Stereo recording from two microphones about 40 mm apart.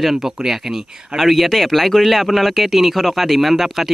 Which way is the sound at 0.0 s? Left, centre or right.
Centre.